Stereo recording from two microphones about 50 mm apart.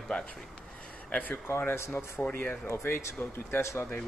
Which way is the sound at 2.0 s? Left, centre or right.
Left.